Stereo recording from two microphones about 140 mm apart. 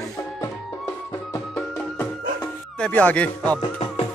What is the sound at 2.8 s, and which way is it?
Speech, 10° left (ahead or behind).